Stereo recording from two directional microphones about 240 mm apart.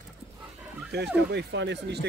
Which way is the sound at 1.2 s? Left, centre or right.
Right.